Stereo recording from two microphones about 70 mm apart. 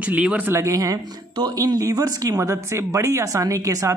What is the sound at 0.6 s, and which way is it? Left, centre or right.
Speech, right.